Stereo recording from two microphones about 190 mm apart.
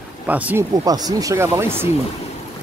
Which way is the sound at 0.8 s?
20° right (ahead or behind).